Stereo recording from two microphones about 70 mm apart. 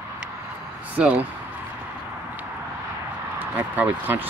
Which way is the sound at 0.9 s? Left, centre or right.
Centre.